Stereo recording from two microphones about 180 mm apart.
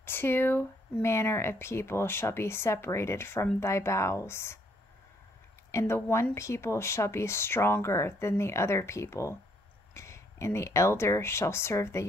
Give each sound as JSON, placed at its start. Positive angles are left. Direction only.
{"t": 0.0, "sound": "speech", "side_deg": 10}
{"t": 5.7, "sound": "speech", "side_deg": 15}